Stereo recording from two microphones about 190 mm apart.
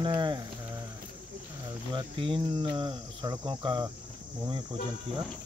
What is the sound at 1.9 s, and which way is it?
Cricket, 25° right (ahead or behind).